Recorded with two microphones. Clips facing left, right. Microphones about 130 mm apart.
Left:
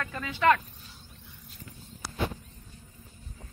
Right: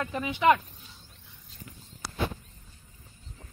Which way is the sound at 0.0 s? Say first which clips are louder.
Right 1 dB; 20° right (ahead or behind).